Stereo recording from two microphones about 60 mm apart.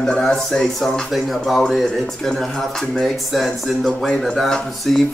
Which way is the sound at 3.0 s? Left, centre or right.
Centre.